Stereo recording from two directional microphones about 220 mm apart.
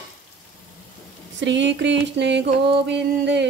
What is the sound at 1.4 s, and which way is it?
Speech, 55° right (ahead or behind).